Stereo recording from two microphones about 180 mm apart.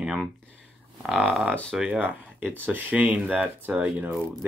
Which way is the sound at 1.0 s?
Centre (ahead or behind).